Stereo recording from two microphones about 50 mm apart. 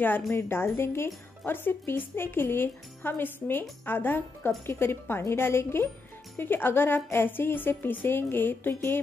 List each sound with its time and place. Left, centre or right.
0.4 s a woman's voice: left
1.4 s a woman's voice: left
6.3 s a woman's voice: left